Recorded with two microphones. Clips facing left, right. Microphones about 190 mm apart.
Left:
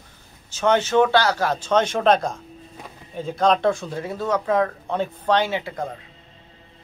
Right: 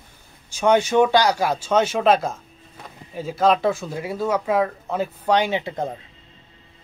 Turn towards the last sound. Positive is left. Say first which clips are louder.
# right 2 dB
turn(degrees=-20)  # may be behind; listen again after turning